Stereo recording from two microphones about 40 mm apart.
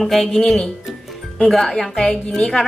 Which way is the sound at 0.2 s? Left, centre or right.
Centre.